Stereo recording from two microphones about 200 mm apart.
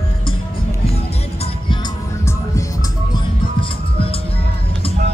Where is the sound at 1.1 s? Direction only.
30° left (ahead or behind).